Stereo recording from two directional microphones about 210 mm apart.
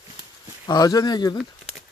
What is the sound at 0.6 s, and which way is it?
Speech, 20° left (ahead or behind).